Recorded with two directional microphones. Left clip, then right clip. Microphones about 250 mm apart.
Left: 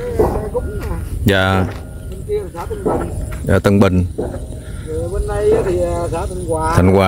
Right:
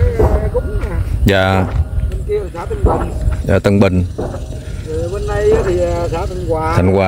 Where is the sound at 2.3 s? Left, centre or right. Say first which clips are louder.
Right 2 dB; centre.